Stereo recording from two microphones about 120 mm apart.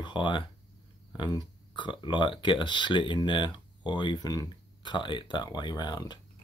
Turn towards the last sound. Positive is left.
turn(degrees=35)  # may be behind; listen again after turning